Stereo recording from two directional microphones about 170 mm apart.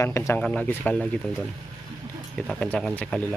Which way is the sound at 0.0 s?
15° left (ahead or behind).